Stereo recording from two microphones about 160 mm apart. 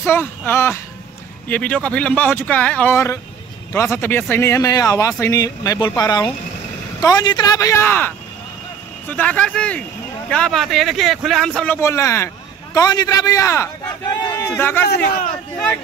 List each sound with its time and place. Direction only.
0.0 s a man's voice: 15° left (ahead or behind)
9.1 s a man's voice: 10° left (ahead or behind)